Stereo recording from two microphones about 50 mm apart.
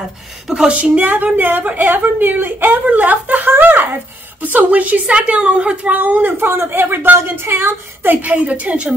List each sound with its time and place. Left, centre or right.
0.5 s a woman's voice: centre
0.7 s a woman's voice: right
1.0 s speech: right
5.9 s speech: right
7.2 s speech: right
8.2 s a woman's voice: right